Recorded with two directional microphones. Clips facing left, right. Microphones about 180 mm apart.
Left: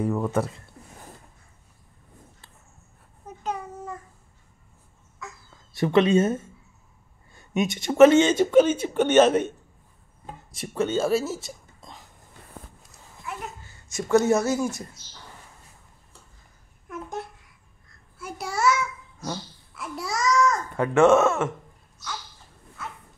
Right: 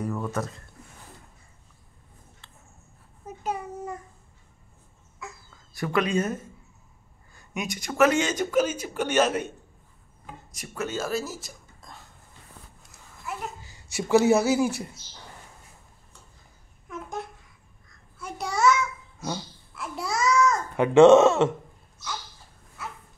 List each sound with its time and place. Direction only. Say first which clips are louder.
0.0 s a man's voice: left 5 dB; 25° left (ahead or behind)
3.3 s a sound: even; 10° right (ahead or behind)
5.8 s a man's voice: left 6 dB; 25° left (ahead or behind)
9.2 s a man's voice: left 5 dB; 10° right (ahead or behind)
10.2 s speech: left 5 dB; 30° left (ahead or behind)
13.2 s a sound: right 1 dB; centre (ahead or behind)
13.6 s speech: even; 10° right (ahead or behind)
18.2 s a sound: right 1 dB; 5° left (ahead or behind)
19.1 s babbling: right 1 dB; 5° right (ahead or behind)
20.7 s a child's voice: right 4 dB; 20° right (ahead or behind)